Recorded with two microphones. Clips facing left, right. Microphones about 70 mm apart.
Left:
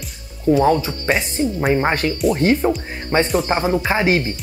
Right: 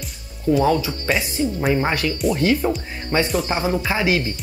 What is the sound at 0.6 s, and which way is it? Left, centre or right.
Speech, left.